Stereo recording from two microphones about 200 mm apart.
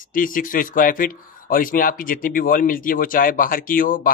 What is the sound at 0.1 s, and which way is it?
Speech, 45° left (ahead or behind).